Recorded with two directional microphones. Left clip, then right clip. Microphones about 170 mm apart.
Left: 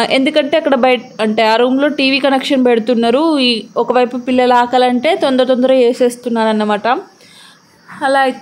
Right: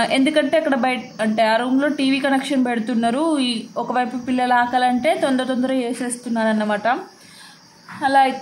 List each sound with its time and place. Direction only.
0.0 s a woman's voice: 30° left (ahead or behind)
8.0 s speech: 30° left (ahead or behind)